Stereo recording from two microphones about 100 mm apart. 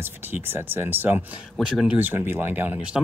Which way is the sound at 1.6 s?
5° right (ahead or behind).